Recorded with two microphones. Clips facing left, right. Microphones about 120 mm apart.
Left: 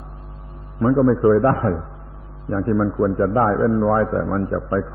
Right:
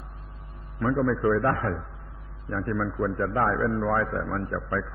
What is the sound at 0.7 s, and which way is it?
A man's voice, 30° left (ahead or behind).